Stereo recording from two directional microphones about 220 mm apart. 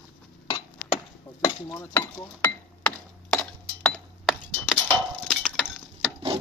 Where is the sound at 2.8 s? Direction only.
5° left (ahead or behind).